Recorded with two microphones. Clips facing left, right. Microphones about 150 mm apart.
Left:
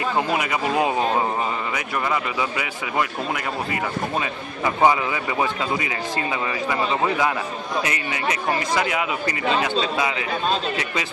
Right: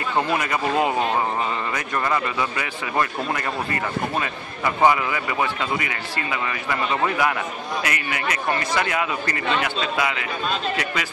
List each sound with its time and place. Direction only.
0.4 s a man's voice: 15° left (ahead or behind)
9.8 s a man's voice: 30° left (ahead or behind)